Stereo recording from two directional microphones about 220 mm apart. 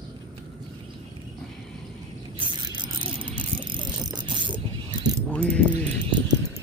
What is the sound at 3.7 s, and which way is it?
Mechanisms, 20° right (ahead or behind).